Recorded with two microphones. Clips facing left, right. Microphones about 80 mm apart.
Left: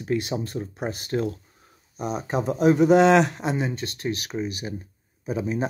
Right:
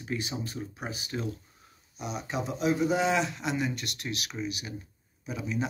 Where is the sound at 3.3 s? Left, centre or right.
Left.